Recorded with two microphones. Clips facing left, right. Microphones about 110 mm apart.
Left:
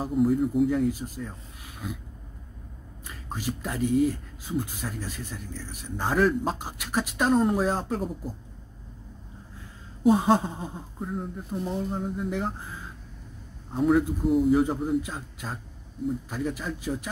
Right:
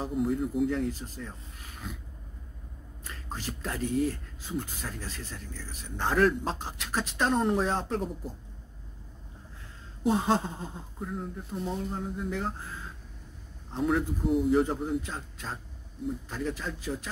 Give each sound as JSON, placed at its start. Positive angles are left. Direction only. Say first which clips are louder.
{"t": 0.0, "sound": "speech", "louder": "left 5 dB", "side_deg": 0}
{"t": 3.1, "sound": "speech", "louder": "left 5 dB", "side_deg": 10}
{"t": 10.0, "sound": "speech", "louder": "left 5 dB", "side_deg": 10}
{"t": 13.7, "sound": "a man's voice", "louder": "left 5 dB", "side_deg": 5}